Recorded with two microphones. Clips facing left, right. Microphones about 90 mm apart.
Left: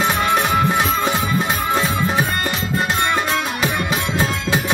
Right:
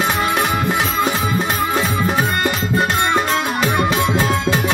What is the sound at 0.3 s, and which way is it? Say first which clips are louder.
Music: left 1 dB; centre (ahead or behind).